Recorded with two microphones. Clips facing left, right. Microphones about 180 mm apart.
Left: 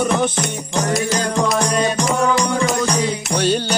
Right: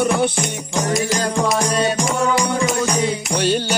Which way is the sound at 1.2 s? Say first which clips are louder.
Even; 35° right (ahead or behind).